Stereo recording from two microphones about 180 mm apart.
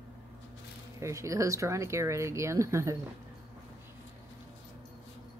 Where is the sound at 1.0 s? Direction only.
15° right (ahead or behind).